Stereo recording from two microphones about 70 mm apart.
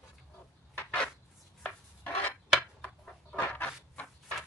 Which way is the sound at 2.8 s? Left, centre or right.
Centre.